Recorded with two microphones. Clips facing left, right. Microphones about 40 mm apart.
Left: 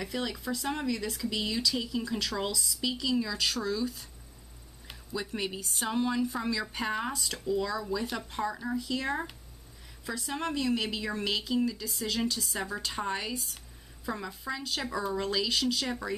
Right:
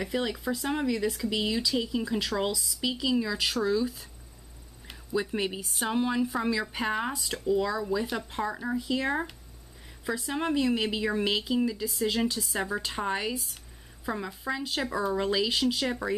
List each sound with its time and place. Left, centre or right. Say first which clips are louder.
0.0 s speech: right 4 dB; centre
5.1 s speech: right 5 dB; centre